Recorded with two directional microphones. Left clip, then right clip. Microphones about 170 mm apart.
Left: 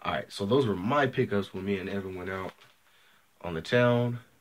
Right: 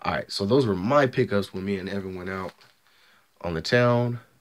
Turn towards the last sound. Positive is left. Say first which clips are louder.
# right 3 dB
turn(degrees=-45)  # may be behind; listen again after turning